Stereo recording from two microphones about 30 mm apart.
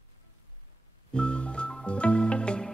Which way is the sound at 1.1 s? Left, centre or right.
Left.